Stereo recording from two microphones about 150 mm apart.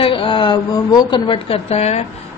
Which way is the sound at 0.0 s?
35° left (ahead or behind).